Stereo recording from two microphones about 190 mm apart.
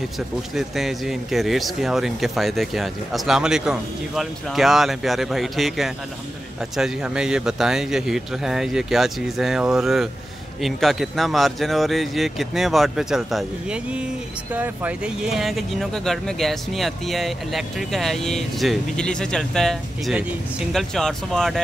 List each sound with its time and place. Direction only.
0.6 s speech: centre (ahead or behind)